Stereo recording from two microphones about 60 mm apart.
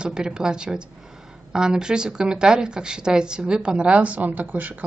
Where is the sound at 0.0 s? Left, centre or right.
Centre.